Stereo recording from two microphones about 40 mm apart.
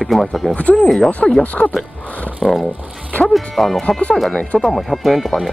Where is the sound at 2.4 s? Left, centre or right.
Centre.